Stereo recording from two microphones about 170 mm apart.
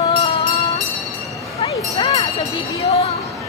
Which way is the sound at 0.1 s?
35° left (ahead or behind).